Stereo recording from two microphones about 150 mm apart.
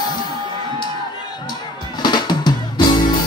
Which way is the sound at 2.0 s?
30° left (ahead or behind).